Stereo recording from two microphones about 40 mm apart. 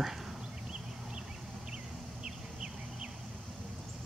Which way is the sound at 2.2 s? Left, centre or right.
Centre.